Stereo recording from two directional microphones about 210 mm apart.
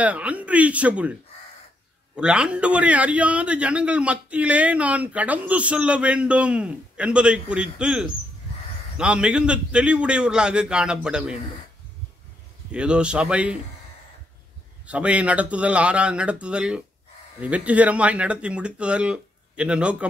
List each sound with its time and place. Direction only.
0.0 s speech: 5° right (ahead or behind)
2.1 s a man's voice: 5° right (ahead or behind)
12.7 s a man's voice: 5° right (ahead or behind)
14.9 s a man's voice: 5° right (ahead or behind)